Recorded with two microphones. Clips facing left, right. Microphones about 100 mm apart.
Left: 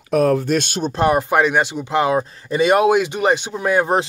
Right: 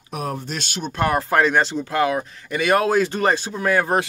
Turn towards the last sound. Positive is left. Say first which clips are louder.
# left 2 dB
turn(degrees=20)  # may be behind; listen again after turning